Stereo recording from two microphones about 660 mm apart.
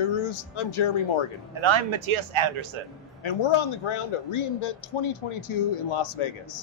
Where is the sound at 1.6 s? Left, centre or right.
Right.